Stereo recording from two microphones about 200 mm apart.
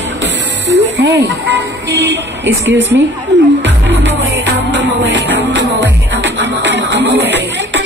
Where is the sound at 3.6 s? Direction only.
60° right (ahead or behind).